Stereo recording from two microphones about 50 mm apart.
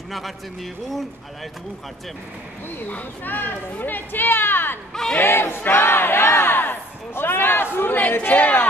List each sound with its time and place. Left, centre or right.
2.9 s speech: left
5.2 s a sound: left
8.1 s speech: left